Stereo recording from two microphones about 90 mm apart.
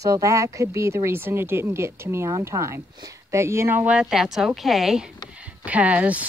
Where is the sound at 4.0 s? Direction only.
5° right (ahead or behind).